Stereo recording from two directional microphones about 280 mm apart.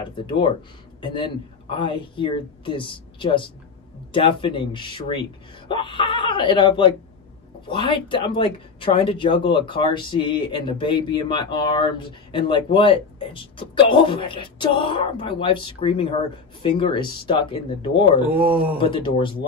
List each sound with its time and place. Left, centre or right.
0.1 s speech: centre
18.3 s speech: centre
18.8 s speech: centre